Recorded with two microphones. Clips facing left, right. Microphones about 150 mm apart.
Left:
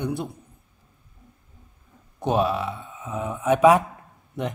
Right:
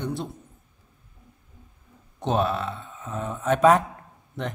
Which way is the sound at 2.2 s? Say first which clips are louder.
Left 2 dB; 10° left (ahead or behind).